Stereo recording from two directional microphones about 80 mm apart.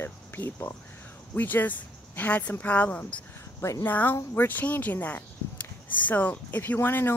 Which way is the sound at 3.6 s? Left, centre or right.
Left.